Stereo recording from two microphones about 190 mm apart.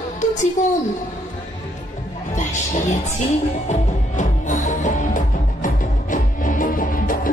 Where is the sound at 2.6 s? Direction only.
35° left (ahead or behind).